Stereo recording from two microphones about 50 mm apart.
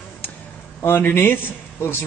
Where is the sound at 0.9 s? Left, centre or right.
Left.